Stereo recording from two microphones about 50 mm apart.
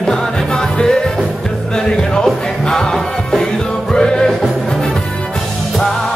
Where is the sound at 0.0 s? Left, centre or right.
Centre.